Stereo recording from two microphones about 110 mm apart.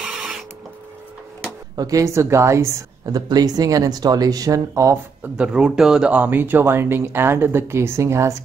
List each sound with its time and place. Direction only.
0.0 s printer: 5° right (ahead or behind)
1.8 s speech: 30° right (ahead or behind)
3.2 s speech: 35° right (ahead or behind)
5.3 s speech: 10° right (ahead or behind); by 8.5 s 25° right (ahead or behind)